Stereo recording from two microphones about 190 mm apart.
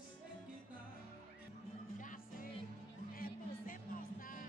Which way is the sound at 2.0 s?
45° left (ahead or behind).